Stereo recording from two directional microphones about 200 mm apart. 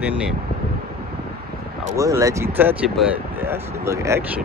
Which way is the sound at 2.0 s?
15° right (ahead or behind).